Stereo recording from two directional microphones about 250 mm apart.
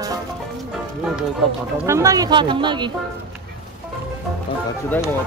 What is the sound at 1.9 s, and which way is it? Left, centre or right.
Speech, centre.